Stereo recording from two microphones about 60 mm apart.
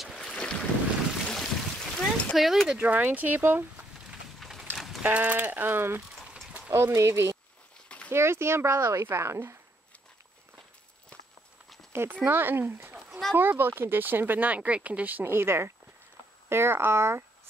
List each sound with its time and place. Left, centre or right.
0.0 s boat: centre
2.3 s speech: centre
2.8 s speech: right
4.4 s a sound: centre
5.0 s speech: right
6.3 s a sound: centre
6.7 s a woman's voice: right
11.9 s a woman's voice: right